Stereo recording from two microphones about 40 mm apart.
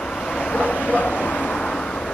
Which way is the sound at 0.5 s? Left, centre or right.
Left.